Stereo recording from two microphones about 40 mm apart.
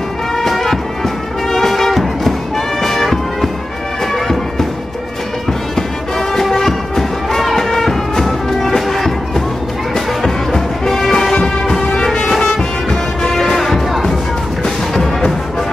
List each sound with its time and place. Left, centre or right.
0.4 s music: centre
13.3 s music: centre